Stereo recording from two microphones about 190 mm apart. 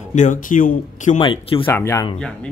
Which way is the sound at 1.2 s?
25° left (ahead or behind).